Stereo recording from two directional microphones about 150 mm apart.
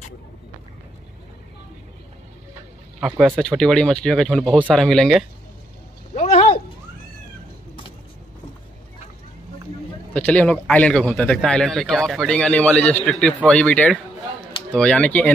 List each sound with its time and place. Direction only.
3.3 s speech: 5° left (ahead or behind)
6.1 s a sound: 45° left (ahead or behind)
10.1 s a man's voice: 10° left (ahead or behind)